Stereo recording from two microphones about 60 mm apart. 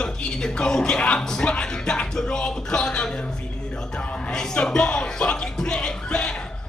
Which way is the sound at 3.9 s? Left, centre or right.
Centre.